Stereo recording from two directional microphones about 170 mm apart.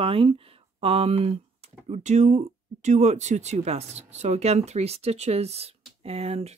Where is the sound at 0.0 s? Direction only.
35° right (ahead or behind).